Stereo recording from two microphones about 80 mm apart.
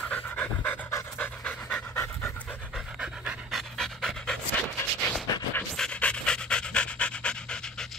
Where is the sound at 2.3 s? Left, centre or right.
Centre.